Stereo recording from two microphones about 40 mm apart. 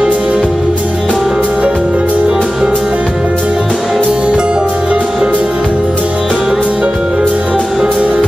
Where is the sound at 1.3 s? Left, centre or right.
Right.